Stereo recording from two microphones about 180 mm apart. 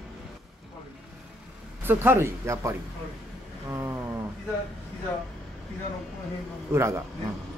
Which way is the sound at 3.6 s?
15° right (ahead or behind).